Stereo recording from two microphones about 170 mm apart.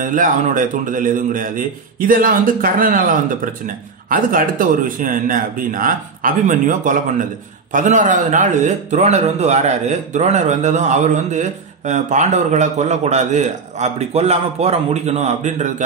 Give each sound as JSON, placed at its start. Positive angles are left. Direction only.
{"t": 0.0, "sound": "speech", "side_deg": -50}